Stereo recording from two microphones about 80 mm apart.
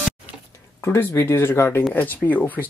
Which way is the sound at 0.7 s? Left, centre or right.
Left.